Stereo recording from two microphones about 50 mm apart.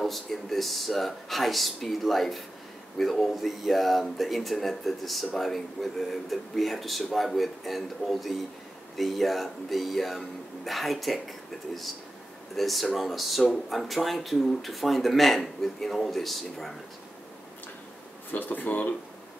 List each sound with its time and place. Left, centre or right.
0.0 s speech: centre
12.5 s speech: centre
18.3 s speech: left